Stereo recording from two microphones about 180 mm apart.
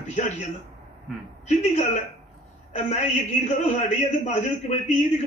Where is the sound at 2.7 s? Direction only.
40° left (ahead or behind).